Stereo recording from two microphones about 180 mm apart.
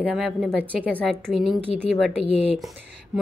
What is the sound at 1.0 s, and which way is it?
Speech, 5° left (ahead or behind).